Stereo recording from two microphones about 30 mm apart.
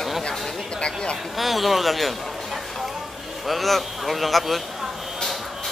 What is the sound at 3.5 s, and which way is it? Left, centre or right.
A man's voice, centre.